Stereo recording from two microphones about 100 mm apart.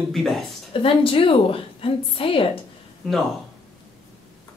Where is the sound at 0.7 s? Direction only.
65° left (ahead or behind).